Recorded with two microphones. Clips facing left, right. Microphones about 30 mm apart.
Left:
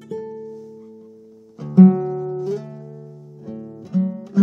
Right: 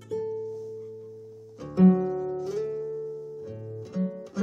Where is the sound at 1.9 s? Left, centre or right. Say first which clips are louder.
Left 4 dB; left.